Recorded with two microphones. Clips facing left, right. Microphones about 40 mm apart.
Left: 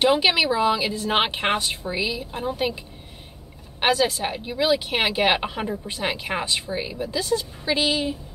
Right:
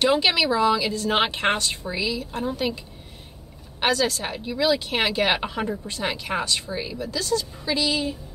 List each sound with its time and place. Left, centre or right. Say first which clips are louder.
0.0 s a woman's voice: left 1 dB; centre
3.8 s a woman's voice: left 2 dB; left
5.6 s speech: right 1 dB; centre
5.9 s a woman's voice: even; left
7.8 s a woman's voice: left 1 dB; left